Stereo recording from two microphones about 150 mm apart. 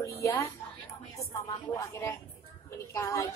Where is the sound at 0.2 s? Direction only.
20° left (ahead or behind).